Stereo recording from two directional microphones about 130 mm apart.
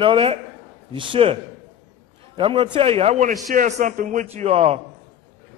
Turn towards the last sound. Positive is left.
turn(degrees=-50)  # may be behind; listen again after turning